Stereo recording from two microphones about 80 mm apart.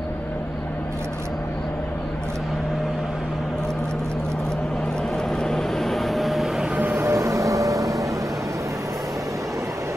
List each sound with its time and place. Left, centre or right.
5.4 s vehicle: centre
7.0 s vehicle: right